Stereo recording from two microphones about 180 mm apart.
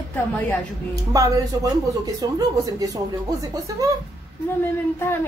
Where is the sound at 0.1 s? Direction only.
10° left (ahead or behind).